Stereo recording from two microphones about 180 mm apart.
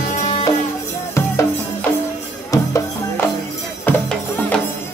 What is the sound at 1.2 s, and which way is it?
Drum kit, 15° left (ahead or behind).